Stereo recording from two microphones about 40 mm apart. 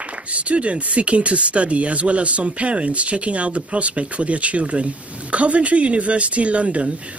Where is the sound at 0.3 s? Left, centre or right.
Right.